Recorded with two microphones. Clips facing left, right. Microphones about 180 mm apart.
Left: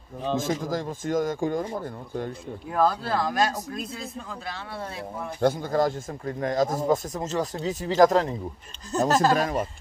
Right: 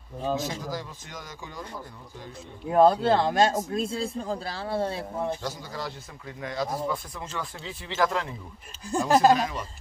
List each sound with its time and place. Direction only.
0.4 s a man's voice: 50° left (ahead or behind)
2.7 s a man's voice: 25° right (ahead or behind)
5.4 s a man's voice: 55° left (ahead or behind)
8.9 s speech: 10° right (ahead or behind)
9.3 s a man's voice: 50° left (ahead or behind)